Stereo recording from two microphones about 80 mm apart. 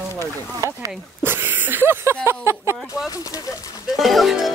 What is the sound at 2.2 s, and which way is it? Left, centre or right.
Speech, right.